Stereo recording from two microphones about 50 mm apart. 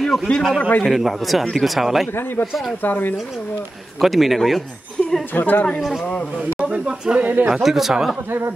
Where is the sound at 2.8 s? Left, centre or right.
Left.